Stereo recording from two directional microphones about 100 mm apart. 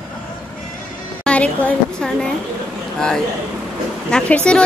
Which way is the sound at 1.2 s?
15° left (ahead or behind).